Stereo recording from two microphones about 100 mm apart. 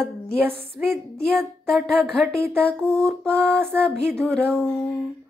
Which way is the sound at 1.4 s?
Centre (ahead or behind).